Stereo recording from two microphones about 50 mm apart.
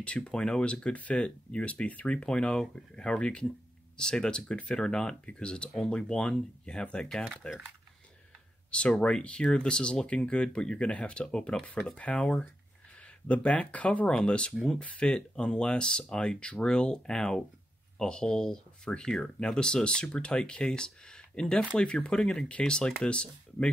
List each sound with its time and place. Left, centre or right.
0.0 s speech: left
2.2 s speech: centre
8.6 s speech: left
13.3 s speech: left
14.0 s speech: centre